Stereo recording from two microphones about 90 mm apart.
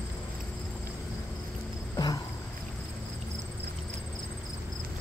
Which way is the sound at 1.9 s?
45° left (ahead or behind).